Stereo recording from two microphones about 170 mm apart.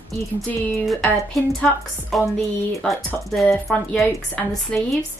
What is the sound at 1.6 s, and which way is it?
Speech, centre (ahead or behind).